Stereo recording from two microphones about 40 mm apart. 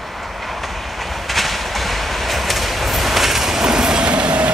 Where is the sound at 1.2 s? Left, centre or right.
Centre.